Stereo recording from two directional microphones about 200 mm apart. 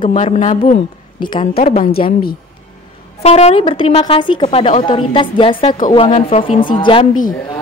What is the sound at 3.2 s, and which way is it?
A woman's voice, 35° left (ahead or behind).